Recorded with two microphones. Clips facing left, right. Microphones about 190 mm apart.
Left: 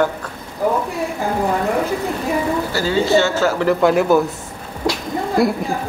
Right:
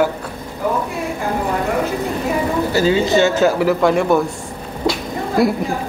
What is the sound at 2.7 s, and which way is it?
Speech, 20° right (ahead or behind).